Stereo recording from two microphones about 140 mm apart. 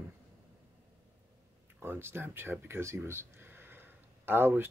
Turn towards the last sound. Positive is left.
turn(degrees=-15)  # may be behind; listen again after turning